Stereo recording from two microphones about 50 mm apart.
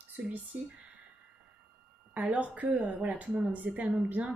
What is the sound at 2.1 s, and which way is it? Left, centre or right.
A woman's voice, right.